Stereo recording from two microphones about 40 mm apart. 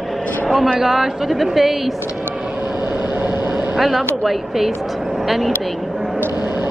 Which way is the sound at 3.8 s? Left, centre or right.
Centre.